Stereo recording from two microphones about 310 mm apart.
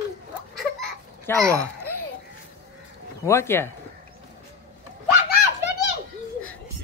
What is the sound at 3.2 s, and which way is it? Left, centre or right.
Speech, centre.